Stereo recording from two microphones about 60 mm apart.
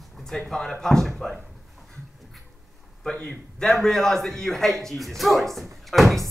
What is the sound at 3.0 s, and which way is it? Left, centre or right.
A man's voice, centre.